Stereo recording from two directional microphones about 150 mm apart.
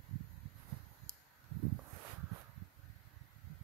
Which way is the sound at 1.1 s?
5° left (ahead or behind).